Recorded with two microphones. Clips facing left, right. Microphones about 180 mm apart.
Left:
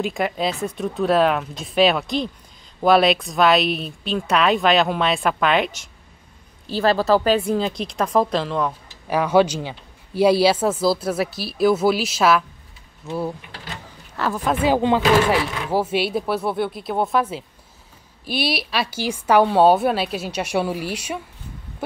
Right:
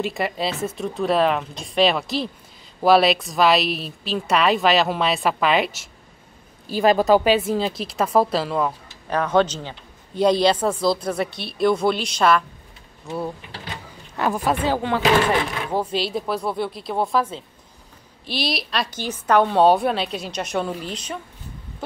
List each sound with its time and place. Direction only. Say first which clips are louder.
0.0 s speech: left 2 dB; centre (ahead or behind)
6.7 s speech: right 1 dB; 15° right (ahead or behind)
7.3 s speech: left 1 dB; 5° right (ahead or behind)
9.0 s speech: left 2 dB; 10° left (ahead or behind)
14.1 s a woman's voice: right 1 dB; 15° right (ahead or behind)
14.5 s a woman's voice: left 7 dB; 10° left (ahead or behind)